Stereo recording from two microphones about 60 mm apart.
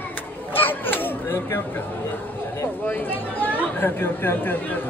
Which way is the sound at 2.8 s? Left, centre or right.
Left.